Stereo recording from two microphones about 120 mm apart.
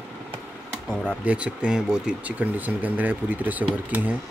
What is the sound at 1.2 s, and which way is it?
Speech, 10° right (ahead or behind).